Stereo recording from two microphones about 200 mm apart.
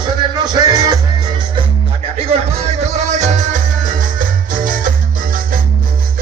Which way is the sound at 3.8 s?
40° right (ahead or behind).